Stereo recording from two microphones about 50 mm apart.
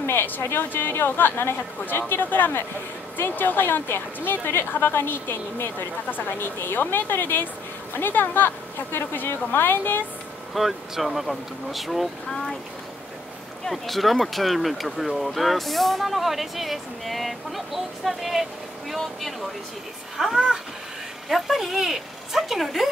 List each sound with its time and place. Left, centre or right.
0.0 s a woman's voice: left
10.5 s speech: centre
13.7 s speech: centre